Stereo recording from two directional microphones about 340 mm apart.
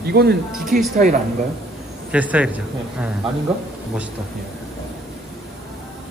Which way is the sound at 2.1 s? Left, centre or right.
Centre.